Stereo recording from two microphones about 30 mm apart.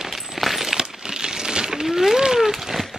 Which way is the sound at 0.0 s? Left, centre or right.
Centre.